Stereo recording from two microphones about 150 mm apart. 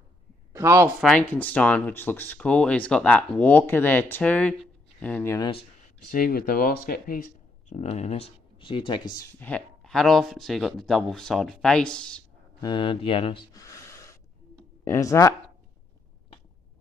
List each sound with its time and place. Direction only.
0.5 s a sound: 20° right (ahead or behind)
1.0 s speech: 5° left (ahead or behind)
5.4 s speech: 40° left (ahead or behind)
6.1 s speech: 75° left (ahead or behind)
7.7 s speech: 50° left (ahead or behind); by 9.3 s 25° left (ahead or behind)
9.4 s speech: 5° left (ahead or behind)
12.5 s speech: 30° left (ahead or behind)